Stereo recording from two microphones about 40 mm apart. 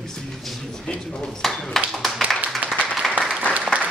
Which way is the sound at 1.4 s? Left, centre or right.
Centre.